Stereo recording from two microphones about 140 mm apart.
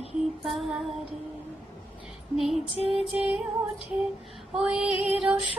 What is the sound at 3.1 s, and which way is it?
Music, 10° right (ahead or behind).